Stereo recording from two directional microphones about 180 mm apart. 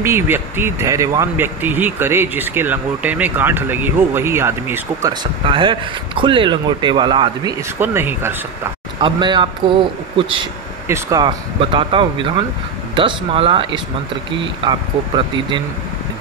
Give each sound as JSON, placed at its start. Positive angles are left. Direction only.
{"t": 0.0, "sound": "speech", "side_deg": -10}
{"t": 5.5, "sound": "speech", "side_deg": -25}
{"t": 7.8, "sound": "speech", "side_deg": -10}
{"t": 9.0, "sound": "speech", "side_deg": -25}
{"t": 10.9, "sound": "speech", "side_deg": -20}